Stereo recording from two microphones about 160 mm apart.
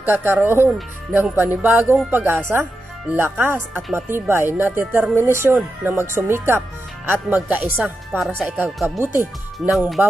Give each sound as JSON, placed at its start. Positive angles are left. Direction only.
{"t": 0.0, "sound": "speech", "side_deg": -15}
{"t": 9.7, "sound": "speech", "side_deg": 0}